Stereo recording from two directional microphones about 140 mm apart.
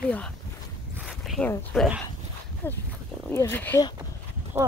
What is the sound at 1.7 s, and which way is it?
Speech, 5° right (ahead or behind).